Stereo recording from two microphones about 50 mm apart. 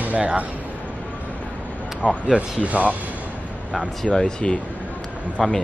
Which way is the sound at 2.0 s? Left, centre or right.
Left.